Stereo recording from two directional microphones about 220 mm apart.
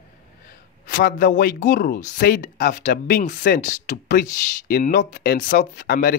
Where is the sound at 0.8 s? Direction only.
40° left (ahead or behind).